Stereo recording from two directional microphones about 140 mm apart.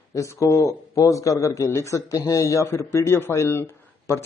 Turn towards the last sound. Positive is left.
turn(degrees=15)  # may be behind; listen again after turning